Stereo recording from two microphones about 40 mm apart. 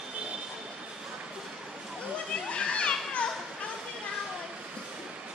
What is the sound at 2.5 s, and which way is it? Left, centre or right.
Children playing, left.